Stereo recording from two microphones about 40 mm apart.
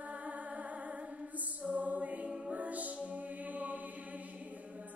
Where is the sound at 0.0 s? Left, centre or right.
Right.